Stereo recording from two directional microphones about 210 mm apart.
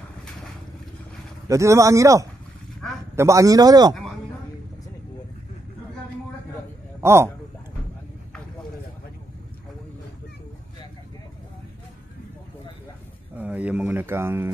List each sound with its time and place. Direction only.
1.5 s a man's voice: 15° right (ahead or behind)
7.0 s a man's voice: 15° right (ahead or behind)
13.4 s speech: 5° right (ahead or behind)